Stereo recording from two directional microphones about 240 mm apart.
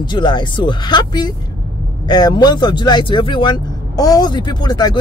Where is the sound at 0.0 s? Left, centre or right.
Centre.